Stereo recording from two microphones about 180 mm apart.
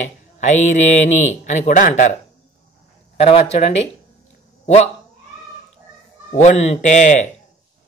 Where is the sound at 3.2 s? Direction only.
35° left (ahead or behind).